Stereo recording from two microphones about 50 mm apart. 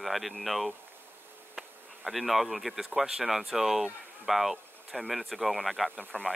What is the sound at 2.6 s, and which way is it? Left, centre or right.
Speech, centre.